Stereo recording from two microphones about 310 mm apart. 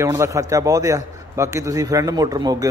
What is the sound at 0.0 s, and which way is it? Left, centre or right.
A man's voice, centre.